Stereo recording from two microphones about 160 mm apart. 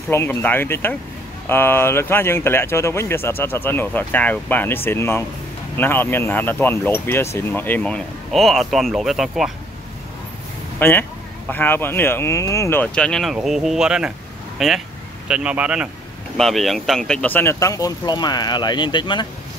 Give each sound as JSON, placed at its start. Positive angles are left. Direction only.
{"t": 0.1, "sound": "speech", "side_deg": 15}
{"t": 10.8, "sound": "a man's voice", "side_deg": 15}